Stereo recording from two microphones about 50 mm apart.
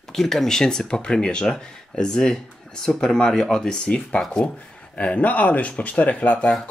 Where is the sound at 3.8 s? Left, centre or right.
Left.